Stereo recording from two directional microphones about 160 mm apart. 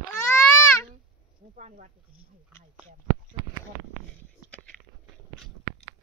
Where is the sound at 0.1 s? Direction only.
15° left (ahead or behind).